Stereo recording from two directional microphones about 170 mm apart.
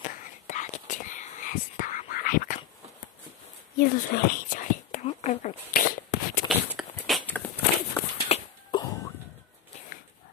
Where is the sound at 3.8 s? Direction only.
60° left (ahead or behind).